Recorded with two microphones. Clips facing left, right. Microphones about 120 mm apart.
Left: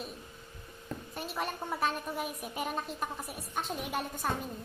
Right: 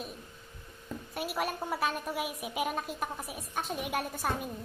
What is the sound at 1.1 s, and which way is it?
A woman's voice, 5° right (ahead or behind).